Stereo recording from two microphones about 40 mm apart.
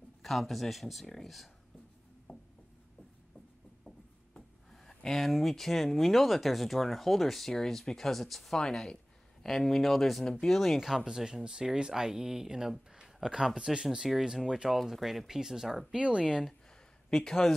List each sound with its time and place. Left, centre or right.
0.2 s speech: centre
2.3 s a sound: centre
4.8 s speech: centre
11.1 s speech: centre
12.9 s a sound: centre
13.6 s speech: centre
16.0 s speech: right
17.1 s speech: centre